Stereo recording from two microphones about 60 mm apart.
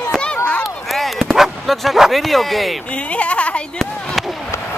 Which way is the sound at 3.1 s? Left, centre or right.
Left.